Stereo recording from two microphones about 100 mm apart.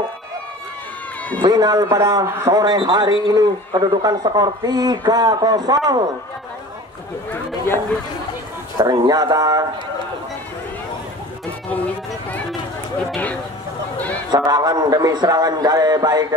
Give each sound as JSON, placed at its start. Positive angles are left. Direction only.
{"t": 1.4, "sound": "a man's voice", "side_deg": -40}
{"t": 8.7, "sound": "a man's voice", "side_deg": -40}
{"t": 13.1, "sound": "speech", "side_deg": 10}
{"t": 13.9, "sound": "a sound", "side_deg": 15}
{"t": 14.3, "sound": "a man's voice", "side_deg": -40}